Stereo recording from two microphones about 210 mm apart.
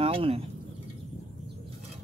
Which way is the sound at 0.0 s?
25° right (ahead or behind).